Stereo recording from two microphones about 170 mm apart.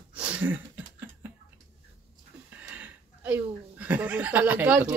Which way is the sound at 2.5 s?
10° right (ahead or behind).